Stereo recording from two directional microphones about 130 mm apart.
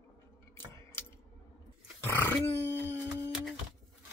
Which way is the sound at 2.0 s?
15° left (ahead or behind).